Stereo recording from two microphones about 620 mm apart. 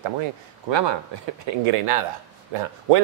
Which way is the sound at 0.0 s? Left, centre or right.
Right.